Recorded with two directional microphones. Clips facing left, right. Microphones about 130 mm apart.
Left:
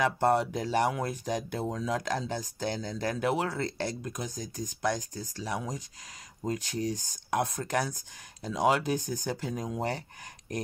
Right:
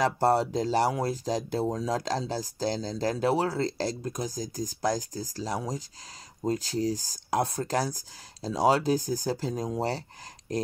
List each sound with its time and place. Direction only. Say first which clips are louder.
0.0 s speech: right 2 dB; 35° right (ahead or behind)